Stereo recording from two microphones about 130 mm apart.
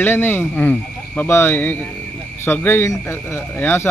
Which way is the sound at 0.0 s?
15° left (ahead or behind).